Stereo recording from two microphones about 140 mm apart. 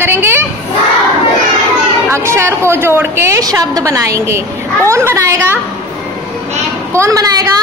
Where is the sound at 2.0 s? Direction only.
20° right (ahead or behind).